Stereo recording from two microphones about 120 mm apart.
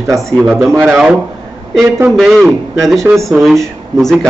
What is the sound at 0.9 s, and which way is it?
Speech, 5° right (ahead or behind).